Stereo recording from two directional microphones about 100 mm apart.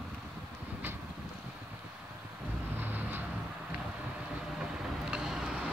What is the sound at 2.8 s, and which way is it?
Vehicle, 20° right (ahead or behind).